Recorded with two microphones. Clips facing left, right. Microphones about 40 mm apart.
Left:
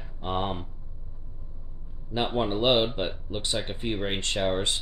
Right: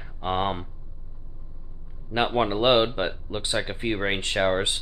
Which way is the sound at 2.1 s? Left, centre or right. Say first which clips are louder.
Right 4 dB; right.